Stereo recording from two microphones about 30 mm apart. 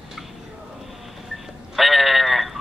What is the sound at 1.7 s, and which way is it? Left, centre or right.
Sheep, centre.